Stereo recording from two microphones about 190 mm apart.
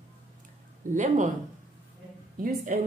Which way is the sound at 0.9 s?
40° right (ahead or behind).